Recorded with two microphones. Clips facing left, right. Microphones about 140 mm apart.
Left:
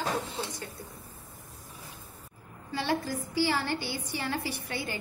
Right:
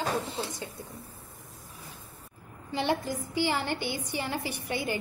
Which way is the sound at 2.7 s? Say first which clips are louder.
Right 1 dB; 20° right (ahead or behind).